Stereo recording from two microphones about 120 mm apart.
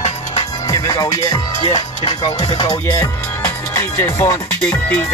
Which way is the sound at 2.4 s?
35° left (ahead or behind).